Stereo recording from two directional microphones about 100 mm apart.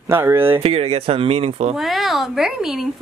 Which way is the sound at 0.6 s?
85° right.